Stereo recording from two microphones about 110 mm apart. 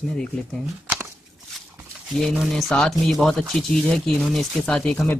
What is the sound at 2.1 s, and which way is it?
Speech, centre (ahead or behind).